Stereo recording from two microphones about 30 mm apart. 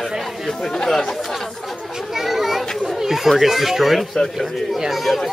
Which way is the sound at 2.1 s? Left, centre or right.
Centre.